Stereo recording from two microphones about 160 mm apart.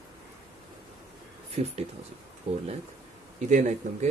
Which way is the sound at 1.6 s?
40° right (ahead or behind).